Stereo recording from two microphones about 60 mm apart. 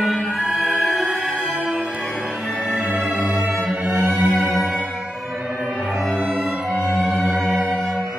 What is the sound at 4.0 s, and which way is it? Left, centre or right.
Music, right.